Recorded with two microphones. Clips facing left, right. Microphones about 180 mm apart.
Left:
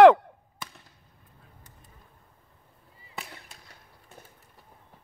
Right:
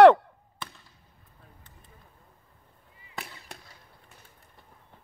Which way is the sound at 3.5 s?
65° right (ahead or behind).